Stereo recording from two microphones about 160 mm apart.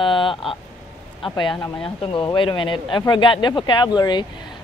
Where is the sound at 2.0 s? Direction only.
30° left (ahead or behind).